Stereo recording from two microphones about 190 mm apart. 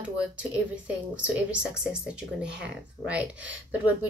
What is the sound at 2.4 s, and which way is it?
Speech, 65° right (ahead or behind).